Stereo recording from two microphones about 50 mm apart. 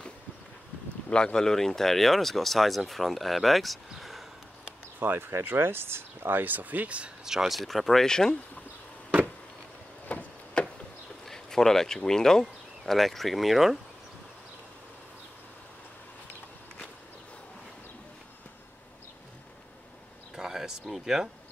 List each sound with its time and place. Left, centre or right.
1.1 s speech: centre
4.0 s a sound: centre
5.0 s speech: right
6.4 s speech: right
7.2 s speech: centre
10.1 s a sound: left
11.2 s bird: centre
12.1 s speech: centre
20.3 s a sound: centre
20.9 s speech: centre